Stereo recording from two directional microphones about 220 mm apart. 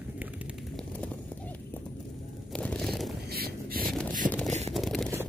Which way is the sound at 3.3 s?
45° right (ahead or behind).